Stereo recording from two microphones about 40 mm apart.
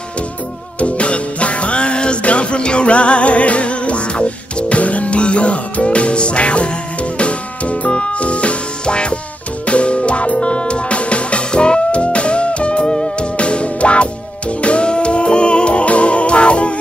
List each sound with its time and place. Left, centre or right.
0.7 s music: left